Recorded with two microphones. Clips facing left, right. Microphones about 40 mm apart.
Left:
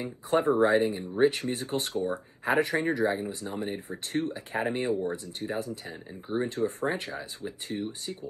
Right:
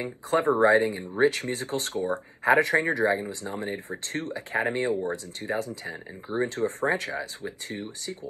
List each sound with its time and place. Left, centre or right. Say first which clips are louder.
0.0 s speech: right 1 dB; right